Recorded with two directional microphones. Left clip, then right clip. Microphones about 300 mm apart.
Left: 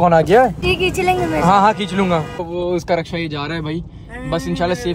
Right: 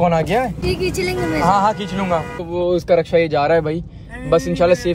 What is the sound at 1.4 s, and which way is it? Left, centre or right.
Speech, left.